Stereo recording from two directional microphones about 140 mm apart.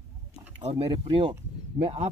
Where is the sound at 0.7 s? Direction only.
45° right (ahead or behind).